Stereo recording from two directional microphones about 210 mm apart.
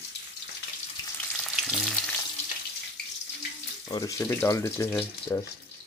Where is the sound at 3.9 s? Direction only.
15° left (ahead or behind).